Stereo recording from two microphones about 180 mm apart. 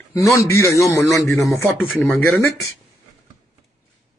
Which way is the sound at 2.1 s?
Centre (ahead or behind).